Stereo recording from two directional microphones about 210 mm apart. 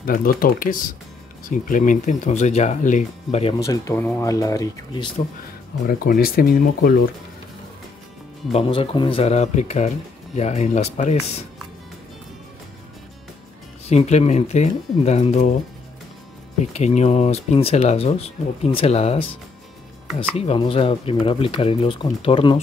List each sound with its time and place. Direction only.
0.0 s speech: 40° left (ahead or behind)
3.5 s speech: 15° left (ahead or behind)
5.9 s speech: 45° left (ahead or behind)
8.5 s speech: 30° left (ahead or behind)
13.8 s speech: 30° left (ahead or behind)
16.7 s speech: 35° left (ahead or behind)